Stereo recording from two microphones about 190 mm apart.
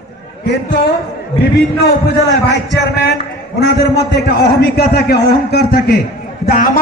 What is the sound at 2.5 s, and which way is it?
A man's voice, 65° left (ahead or behind).